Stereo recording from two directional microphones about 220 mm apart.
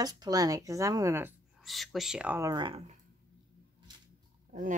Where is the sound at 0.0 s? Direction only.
15° right (ahead or behind).